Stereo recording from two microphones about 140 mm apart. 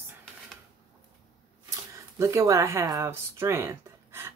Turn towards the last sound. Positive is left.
turn(degrees=-20)  # may be behind; listen again after turning